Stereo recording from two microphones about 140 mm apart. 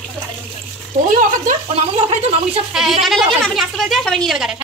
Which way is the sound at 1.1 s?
70° right (ahead or behind).